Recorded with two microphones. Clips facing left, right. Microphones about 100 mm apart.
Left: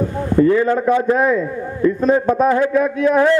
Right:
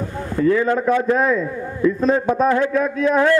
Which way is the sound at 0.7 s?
10° left (ahead or behind).